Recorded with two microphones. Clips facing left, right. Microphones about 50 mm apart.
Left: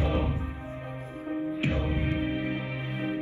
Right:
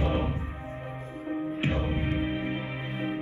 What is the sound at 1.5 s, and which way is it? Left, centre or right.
Music, right.